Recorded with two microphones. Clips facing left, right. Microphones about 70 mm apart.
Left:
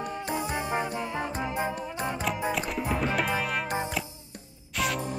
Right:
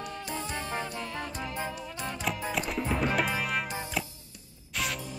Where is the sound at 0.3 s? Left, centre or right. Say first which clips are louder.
Left 5 dB; centre.